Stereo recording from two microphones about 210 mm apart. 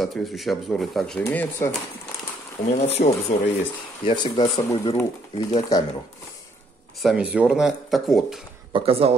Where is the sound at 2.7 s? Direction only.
30° left (ahead or behind).